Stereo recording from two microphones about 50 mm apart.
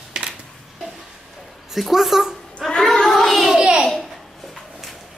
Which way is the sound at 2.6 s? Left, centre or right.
Centre.